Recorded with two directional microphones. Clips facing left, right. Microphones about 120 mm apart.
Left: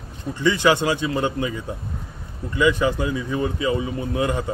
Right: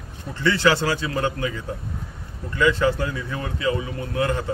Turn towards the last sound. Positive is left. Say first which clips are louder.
# left 1 dB
turn(degrees=15)  # may be behind; listen again after turning